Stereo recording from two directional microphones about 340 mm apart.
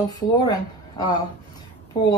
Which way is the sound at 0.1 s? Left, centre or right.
Centre.